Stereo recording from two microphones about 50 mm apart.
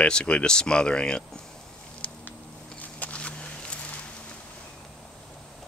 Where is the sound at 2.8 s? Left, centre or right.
Left.